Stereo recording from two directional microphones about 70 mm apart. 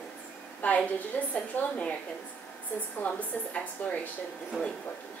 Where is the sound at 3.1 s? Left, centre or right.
Left.